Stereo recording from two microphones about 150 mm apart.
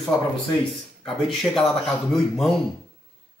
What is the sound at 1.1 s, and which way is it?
A man's voice, 5° left (ahead or behind).